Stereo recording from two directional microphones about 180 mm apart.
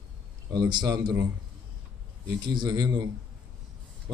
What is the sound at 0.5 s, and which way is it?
Speech, 20° right (ahead or behind).